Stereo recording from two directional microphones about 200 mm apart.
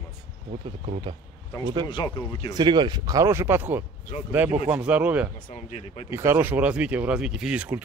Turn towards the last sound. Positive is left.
turn(degrees=-5)  # may be behind; listen again after turning